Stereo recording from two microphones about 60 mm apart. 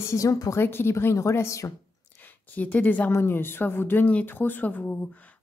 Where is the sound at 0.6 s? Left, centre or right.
Left.